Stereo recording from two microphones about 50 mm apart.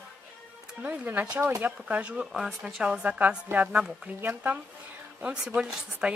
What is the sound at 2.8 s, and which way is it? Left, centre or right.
Speech, right.